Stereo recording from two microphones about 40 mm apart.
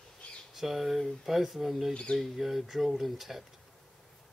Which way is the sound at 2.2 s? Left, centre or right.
Centre.